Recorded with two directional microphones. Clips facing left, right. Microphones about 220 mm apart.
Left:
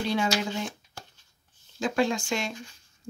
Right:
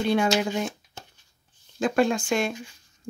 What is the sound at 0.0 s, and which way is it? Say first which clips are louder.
Speech: right 5 dB; 55° right (ahead or behind).